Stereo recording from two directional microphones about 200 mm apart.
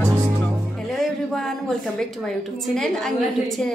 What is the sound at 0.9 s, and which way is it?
A woman's voice, centre (ahead or behind).